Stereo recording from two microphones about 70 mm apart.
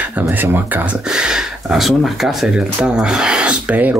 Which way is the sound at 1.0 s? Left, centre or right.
Centre.